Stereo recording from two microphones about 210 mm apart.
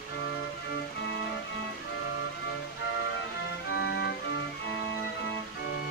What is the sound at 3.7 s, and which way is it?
Organ, 55° left (ahead or behind).